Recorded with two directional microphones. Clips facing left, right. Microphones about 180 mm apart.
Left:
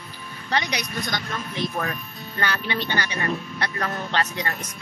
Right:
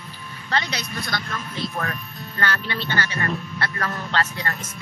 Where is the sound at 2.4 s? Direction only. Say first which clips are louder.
Even; 15° left (ahead or behind).